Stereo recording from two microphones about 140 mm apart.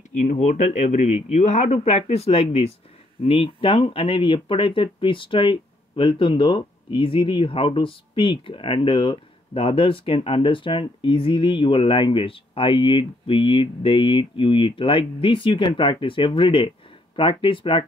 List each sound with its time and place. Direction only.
0.2 s speech: 55° left (ahead or behind); by 17.8 s 35° left (ahead or behind)